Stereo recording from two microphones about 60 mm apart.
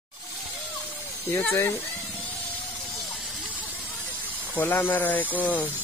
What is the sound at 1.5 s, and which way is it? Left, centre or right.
Speech, left.